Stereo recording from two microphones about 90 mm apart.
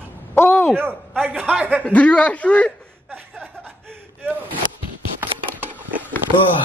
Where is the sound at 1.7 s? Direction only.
15° left (ahead or behind).